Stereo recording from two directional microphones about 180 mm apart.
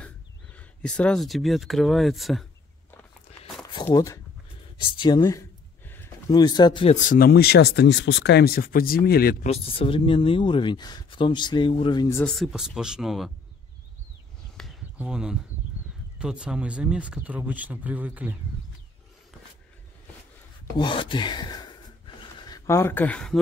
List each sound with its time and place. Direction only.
0.6 s speech: 5° left (ahead or behind)
3.8 s speech: 20° left (ahead or behind)
5.2 s a sound: 15° left (ahead or behind)
6.3 s speech: 25° left (ahead or behind)
7.0 s speech: 50° left (ahead or behind)
9.5 s speech: 30° left (ahead or behind)
12.2 s speech: centre (ahead or behind)
14.6 s a sound: centre (ahead or behind)
16.2 s speech: 5° right (ahead or behind)
20.7 s a sound: 25° left (ahead or behind); by 23.4 s 5° left (ahead or behind)